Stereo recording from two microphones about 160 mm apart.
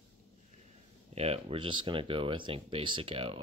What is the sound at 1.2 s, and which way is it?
Speech, 40° right (ahead or behind).